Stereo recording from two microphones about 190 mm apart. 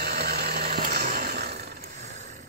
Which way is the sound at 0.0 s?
55° right (ahead or behind).